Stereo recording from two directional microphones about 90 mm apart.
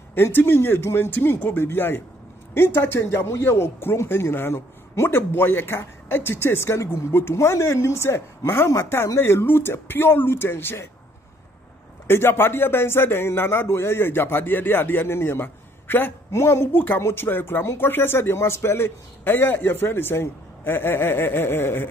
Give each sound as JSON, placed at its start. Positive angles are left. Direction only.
{"t": 0.1, "sound": "a man's voice", "side_deg": 25}
{"t": 12.1, "sound": "a man's voice", "side_deg": 25}